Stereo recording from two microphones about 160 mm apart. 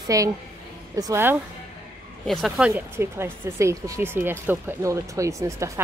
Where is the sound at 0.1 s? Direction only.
20° right (ahead or behind).